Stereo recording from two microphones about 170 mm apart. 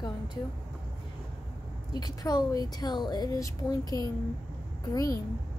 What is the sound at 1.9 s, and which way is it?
Speech, 25° left (ahead or behind).